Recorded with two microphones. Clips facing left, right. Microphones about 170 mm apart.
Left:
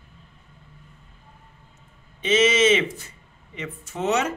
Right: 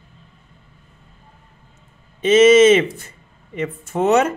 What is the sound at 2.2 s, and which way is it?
Speech, 50° right (ahead or behind).